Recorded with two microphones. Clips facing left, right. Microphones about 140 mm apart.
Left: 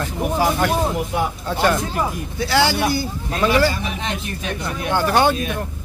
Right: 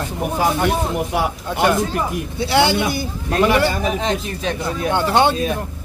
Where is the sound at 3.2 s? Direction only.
65° right (ahead or behind).